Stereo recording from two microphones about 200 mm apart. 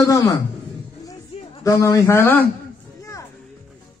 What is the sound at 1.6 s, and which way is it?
Speech, 15° left (ahead or behind).